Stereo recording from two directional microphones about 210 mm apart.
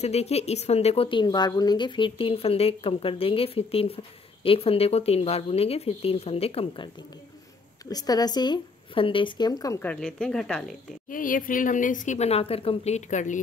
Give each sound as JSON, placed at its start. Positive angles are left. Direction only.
{"t": 0.0, "sound": "a woman's voice", "side_deg": 30}
{"t": 7.9, "sound": "a woman's voice", "side_deg": 20}
{"t": 11.1, "sound": "a woman's voice", "side_deg": 40}